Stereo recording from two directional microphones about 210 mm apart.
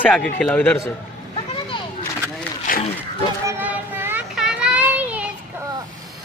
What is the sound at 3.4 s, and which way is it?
Child singing, 10° right (ahead or behind).